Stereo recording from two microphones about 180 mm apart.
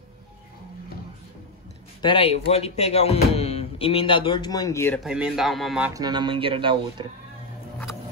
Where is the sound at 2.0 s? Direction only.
30° left (ahead or behind).